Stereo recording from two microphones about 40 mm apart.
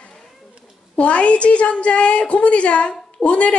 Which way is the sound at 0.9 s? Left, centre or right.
Left.